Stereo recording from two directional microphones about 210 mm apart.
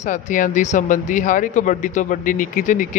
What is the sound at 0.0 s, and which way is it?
A man's voice, 40° left (ahead or behind).